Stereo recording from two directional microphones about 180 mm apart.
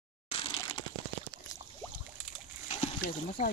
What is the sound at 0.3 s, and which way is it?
Crushing, 30° left (ahead or behind).